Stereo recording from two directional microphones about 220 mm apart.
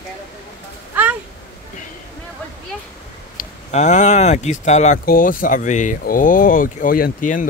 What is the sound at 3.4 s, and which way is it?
Speech, 35° left (ahead or behind).